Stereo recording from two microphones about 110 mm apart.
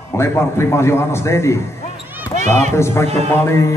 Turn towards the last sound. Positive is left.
turn(degrees=25)  # may be behind; listen again after turning